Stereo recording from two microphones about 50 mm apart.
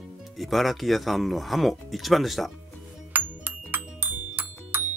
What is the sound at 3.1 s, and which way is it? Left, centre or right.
Music, right.